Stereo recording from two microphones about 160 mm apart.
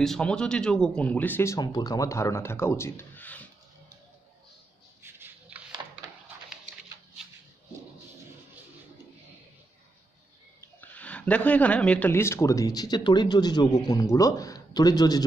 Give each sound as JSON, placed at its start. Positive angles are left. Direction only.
{"t": 0.0, "sound": "speech", "side_deg": 5}
{"t": 5.0, "sound": "a sound", "side_deg": -15}
{"t": 10.8, "sound": "speech", "side_deg": 10}